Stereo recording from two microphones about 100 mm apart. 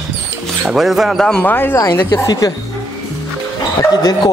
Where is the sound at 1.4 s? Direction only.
20° left (ahead or behind).